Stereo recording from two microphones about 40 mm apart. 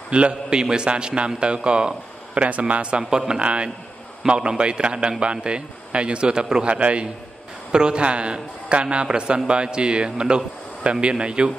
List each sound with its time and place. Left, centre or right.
0.1 s a man's voice: right
2.4 s a man's voice: right
6.7 s a man's voice: right
7.7 s a man's voice: right